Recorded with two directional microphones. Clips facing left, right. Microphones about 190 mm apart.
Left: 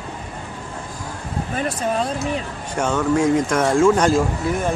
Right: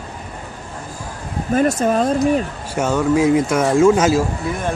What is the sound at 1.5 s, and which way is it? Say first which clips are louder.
Speech: right 8 dB; 45° right (ahead or behind).